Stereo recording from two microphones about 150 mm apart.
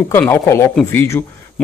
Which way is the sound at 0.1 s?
15° left (ahead or behind).